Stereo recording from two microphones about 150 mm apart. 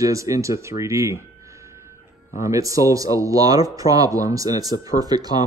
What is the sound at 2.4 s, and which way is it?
A man's voice, 20° right (ahead or behind).